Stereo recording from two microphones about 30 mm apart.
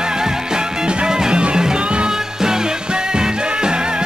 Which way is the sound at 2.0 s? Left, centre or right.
Right.